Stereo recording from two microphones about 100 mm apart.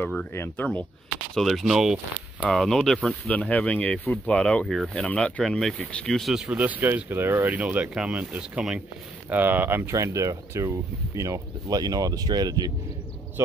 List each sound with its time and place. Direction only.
0.3 s speech: 25° left (ahead or behind)
1.3 s speech: centre (ahead or behind)
9.3 s speech: 20° right (ahead or behind); by 12.7 s 40° right (ahead or behind)